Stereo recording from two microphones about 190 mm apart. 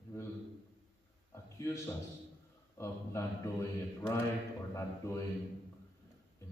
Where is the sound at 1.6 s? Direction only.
15° left (ahead or behind).